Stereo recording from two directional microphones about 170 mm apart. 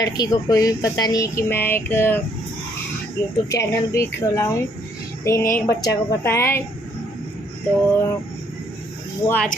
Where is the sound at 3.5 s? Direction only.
20° left (ahead or behind).